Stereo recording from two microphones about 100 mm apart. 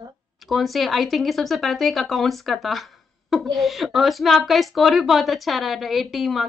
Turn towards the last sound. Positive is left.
turn(degrees=0)  # may be behind; listen again after turning